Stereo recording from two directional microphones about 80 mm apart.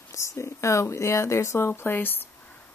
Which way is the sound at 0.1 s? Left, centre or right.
Left.